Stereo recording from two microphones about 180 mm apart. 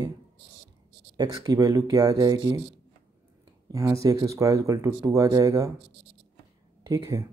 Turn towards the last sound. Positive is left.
turn(degrees=-20)  # may be behind; listen again after turning